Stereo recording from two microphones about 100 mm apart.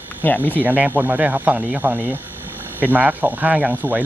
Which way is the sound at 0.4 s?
15° right (ahead or behind).